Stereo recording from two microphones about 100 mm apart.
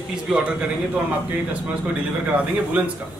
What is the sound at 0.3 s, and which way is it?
Speech, 5° right (ahead or behind).